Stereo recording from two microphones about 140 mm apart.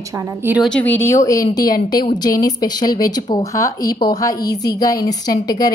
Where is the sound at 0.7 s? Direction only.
10° left (ahead or behind).